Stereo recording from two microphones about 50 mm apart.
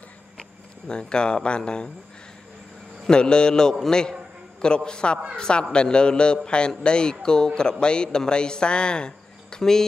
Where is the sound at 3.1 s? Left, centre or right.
Centre.